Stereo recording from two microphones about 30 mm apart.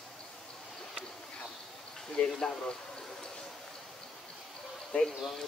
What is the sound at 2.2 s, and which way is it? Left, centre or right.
Speech, left.